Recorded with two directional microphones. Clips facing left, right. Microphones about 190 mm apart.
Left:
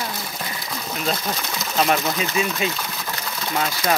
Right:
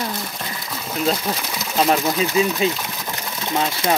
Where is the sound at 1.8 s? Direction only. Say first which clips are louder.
Right 2 dB; 15° right (ahead or behind).